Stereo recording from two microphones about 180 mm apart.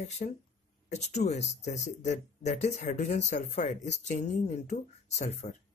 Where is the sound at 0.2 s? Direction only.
45° left (ahead or behind).